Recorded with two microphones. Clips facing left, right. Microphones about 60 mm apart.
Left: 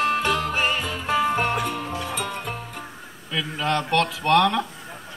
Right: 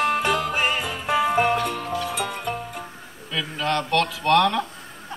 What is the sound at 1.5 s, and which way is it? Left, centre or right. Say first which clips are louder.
Music: right 1 dB; centre.